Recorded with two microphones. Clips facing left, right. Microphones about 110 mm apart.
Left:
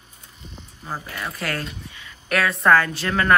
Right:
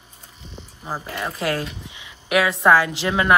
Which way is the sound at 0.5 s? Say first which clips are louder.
Right 2 dB; 15° right (ahead or behind).